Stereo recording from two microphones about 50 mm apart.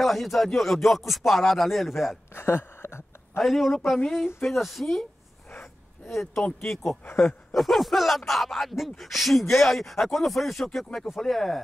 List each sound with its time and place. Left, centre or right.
0.0 s speech: centre
2.3 s a sound: left
3.3 s speech: centre
6.0 s speech: centre
7.1 s speech: left
7.5 s speech: centre